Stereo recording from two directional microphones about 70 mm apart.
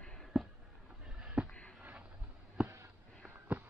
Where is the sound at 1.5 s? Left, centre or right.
Centre.